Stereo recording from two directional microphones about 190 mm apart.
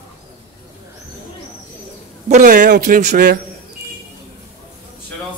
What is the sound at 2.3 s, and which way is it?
A man's voice, 40° right (ahead or behind).